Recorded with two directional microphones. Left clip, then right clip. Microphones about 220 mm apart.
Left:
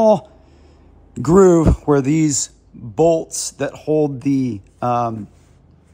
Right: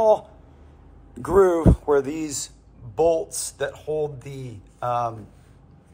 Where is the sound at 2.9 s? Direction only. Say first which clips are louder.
Left 5 dB; 40° left (ahead or behind).